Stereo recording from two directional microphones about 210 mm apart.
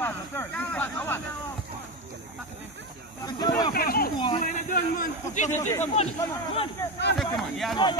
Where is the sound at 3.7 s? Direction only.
45° left (ahead or behind).